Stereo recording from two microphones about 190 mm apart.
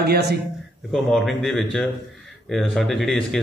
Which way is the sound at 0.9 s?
Centre (ahead or behind).